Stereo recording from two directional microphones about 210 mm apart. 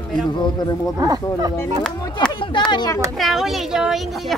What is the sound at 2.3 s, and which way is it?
Speech, 20° left (ahead or behind).